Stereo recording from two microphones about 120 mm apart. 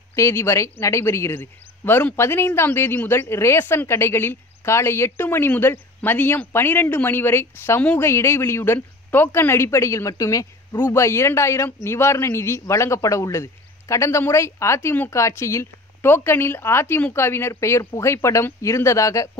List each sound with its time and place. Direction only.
0.1 s a man's voice: 25° left (ahead or behind)